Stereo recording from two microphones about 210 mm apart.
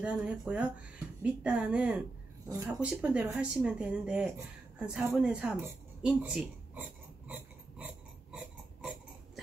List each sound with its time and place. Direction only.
0.0 s speech: 5° right (ahead or behind)